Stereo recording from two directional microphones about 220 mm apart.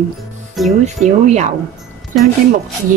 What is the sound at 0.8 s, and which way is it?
Speech, 30° right (ahead or behind).